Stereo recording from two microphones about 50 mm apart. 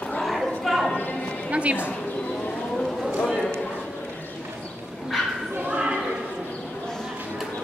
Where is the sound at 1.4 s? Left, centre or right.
Right.